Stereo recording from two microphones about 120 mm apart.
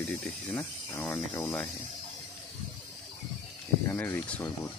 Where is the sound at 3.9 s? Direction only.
15° left (ahead or behind).